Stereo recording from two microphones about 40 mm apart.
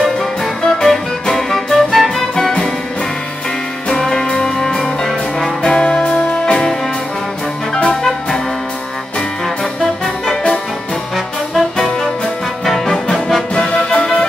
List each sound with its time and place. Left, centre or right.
0.6 s music: centre
4.0 s music: centre
5.7 s music: left
7.7 s music: left
11.5 s music: centre
13.6 s music: left